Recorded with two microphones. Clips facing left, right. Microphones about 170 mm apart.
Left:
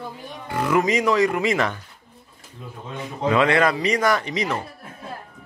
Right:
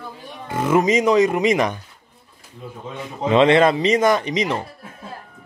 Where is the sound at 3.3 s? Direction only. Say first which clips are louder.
Right 4 dB; 25° right (ahead or behind).